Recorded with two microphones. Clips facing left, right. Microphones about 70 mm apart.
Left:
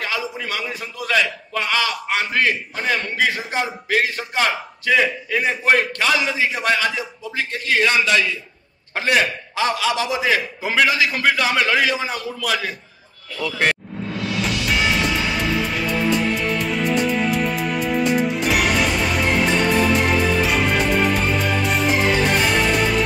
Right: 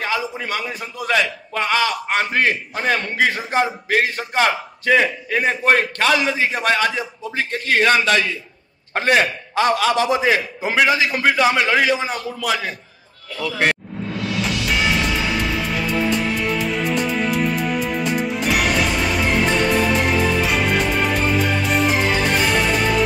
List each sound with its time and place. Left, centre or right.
0.0 s a man's voice: right
13.4 s speech: centre
13.9 s music: centre